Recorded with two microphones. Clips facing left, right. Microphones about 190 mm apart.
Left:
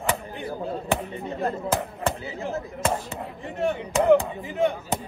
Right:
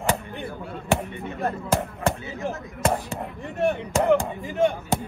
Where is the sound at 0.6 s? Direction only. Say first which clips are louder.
Right 2 dB; 35° left (ahead or behind).